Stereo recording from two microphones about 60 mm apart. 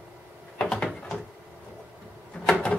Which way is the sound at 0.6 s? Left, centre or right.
Centre.